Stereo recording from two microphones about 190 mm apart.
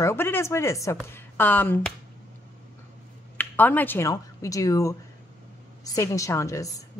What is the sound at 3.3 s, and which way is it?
Speech, 10° left (ahead or behind).